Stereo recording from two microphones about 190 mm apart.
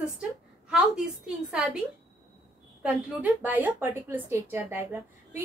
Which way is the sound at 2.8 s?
10° right (ahead or behind).